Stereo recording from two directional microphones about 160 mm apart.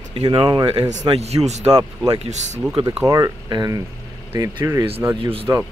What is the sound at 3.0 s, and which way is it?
Speech, 20° right (ahead or behind).